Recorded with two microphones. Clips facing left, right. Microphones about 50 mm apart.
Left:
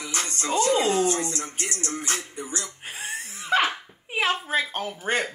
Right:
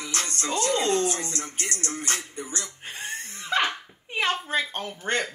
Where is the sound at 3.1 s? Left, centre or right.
Centre.